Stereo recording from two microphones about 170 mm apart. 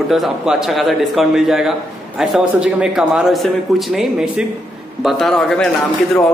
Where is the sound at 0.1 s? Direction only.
Centre (ahead or behind).